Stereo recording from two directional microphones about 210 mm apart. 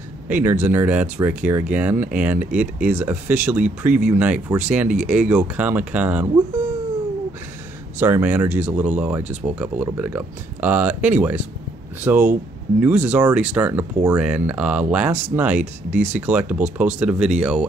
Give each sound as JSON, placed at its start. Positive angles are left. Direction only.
{"t": 0.3, "sound": "speech", "side_deg": -10}
{"t": 8.0, "sound": "speech", "side_deg": -10}